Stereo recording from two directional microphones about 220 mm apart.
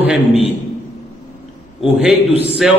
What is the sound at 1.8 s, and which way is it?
Speech, centre (ahead or behind).